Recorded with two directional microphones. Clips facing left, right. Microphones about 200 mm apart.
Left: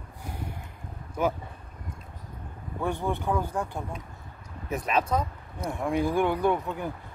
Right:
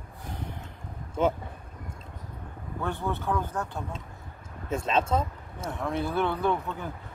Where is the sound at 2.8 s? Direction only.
15° left (ahead or behind).